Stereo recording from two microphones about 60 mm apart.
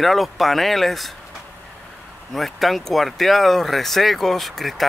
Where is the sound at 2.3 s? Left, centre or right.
Centre.